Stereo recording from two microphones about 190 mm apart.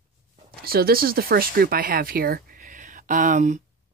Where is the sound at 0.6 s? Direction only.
50° right (ahead or behind).